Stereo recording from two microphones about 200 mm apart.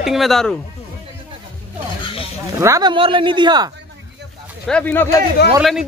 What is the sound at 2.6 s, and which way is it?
Speech, 20° right (ahead or behind).